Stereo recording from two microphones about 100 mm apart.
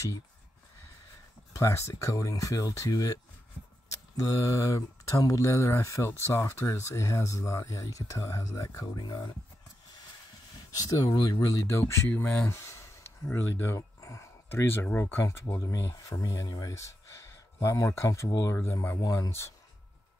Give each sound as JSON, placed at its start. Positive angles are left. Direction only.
{"t": 1.5, "sound": "speech", "side_deg": 30}
{"t": 10.8, "sound": "speech", "side_deg": 35}
{"t": 12.1, "sound": "speech", "side_deg": 15}
{"t": 15.5, "sound": "speech", "side_deg": 35}
{"t": 18.6, "sound": "speech", "side_deg": 25}
{"t": 18.9, "sound": "speech", "side_deg": 35}